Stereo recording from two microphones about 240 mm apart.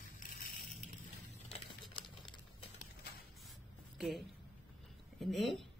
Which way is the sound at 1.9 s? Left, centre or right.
Left.